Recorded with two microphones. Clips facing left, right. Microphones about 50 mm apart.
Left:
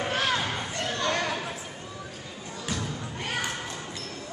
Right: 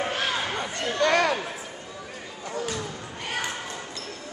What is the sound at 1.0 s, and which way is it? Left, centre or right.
Chatter, right.